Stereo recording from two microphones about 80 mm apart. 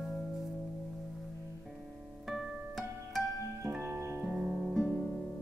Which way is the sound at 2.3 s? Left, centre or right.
Centre.